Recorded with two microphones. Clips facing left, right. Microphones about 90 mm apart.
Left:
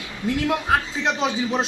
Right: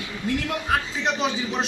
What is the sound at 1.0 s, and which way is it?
Speech, 30° left (ahead or behind).